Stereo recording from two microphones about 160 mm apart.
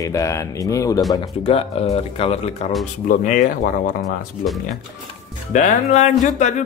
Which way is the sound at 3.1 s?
55° left (ahead or behind).